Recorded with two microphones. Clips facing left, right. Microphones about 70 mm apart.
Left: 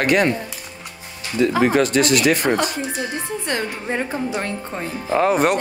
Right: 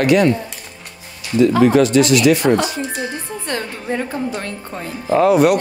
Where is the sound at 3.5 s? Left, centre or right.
Left.